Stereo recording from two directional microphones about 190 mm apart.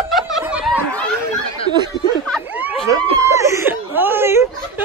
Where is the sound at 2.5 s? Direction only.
10° right (ahead or behind).